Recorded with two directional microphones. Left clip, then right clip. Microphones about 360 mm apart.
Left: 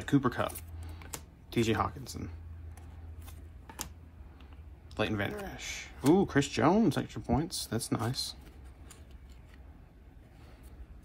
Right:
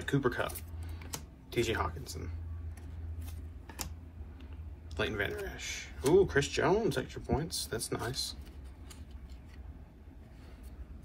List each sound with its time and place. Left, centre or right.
0.0 s speech: centre
1.5 s speech: centre
4.9 s speech: centre